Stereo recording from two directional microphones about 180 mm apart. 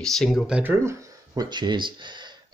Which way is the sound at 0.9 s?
20° right (ahead or behind).